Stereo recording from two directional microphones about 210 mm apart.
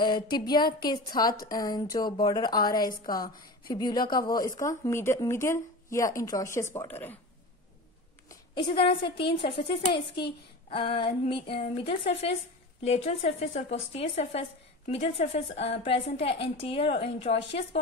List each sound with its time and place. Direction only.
0.0 s a woman's voice: 20° left (ahead or behind)
8.3 s a sound: 20° left (ahead or behind)
8.8 s a woman's voice: 25° left (ahead or behind)